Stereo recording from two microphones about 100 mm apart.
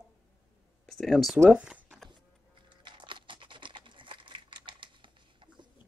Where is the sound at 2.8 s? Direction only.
55° right (ahead or behind).